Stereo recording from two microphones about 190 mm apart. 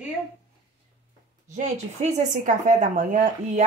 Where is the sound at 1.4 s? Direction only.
40° right (ahead or behind).